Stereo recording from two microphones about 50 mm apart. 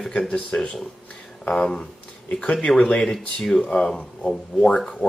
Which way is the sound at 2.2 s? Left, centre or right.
Left.